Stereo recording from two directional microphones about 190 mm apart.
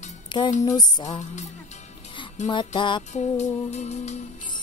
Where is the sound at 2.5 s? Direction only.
25° left (ahead or behind).